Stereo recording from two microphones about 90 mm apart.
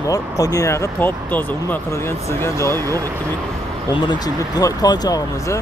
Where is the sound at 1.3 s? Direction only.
20° left (ahead or behind).